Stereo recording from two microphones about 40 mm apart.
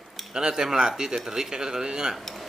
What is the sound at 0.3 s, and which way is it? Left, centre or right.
Speech, centre.